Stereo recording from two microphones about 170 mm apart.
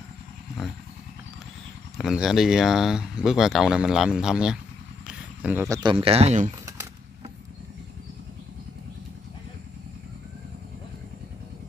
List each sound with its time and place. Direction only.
2.0 s speech: centre (ahead or behind)
5.0 s a sound: 10° right (ahead or behind)
5.8 s speech: 30° right (ahead or behind)